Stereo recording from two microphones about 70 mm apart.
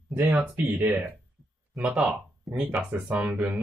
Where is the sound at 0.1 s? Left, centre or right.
Right.